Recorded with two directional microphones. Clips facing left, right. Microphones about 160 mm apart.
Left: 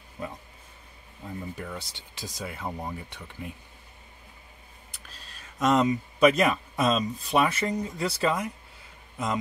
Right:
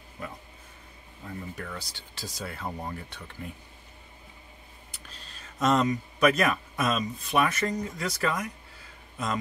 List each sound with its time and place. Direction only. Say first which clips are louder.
0.2 s speech: left 3 dB; 25° left (ahead or behind)
5.6 s speech: left 2 dB; 15° left (ahead or behind)